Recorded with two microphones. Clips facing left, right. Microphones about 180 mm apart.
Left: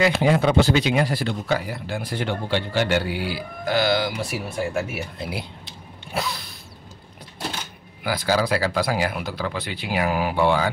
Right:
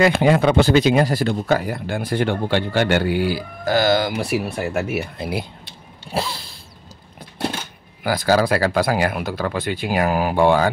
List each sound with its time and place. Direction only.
0.0 s speech: 55° right (ahead or behind)
4.2 s speech: 65° right (ahead or behind)
6.1 s a sound: 30° right (ahead or behind)
8.0 s speech: 45° right (ahead or behind)